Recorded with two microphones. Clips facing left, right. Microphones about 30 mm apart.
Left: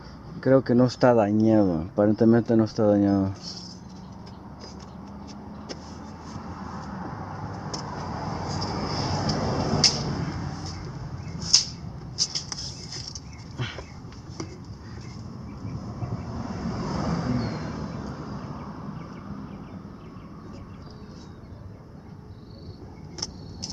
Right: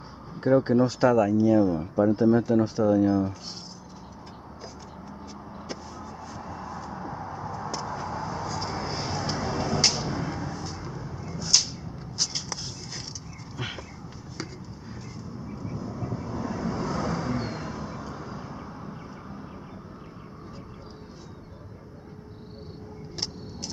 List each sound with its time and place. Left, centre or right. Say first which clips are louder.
0.4 s speech: left 2 dB; centre
0.8 s speech: left 2 dB; centre
6.2 s vehicle: even; centre
12.2 s a sound: even; centre
13.6 s a sound: even; centre
15.4 s vehicle: right 3 dB; centre